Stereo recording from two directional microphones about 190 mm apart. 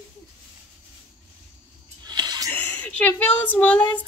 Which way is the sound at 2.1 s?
20° right (ahead or behind).